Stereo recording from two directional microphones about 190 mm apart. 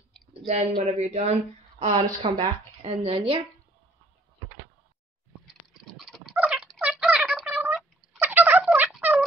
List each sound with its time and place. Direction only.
0.3 s a woman's voice: 35° right (ahead or behind)
5.9 s cat: centre (ahead or behind)
6.3 s a sound: 5° right (ahead or behind)